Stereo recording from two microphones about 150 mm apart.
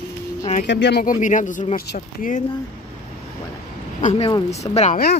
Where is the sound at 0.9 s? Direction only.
90° left.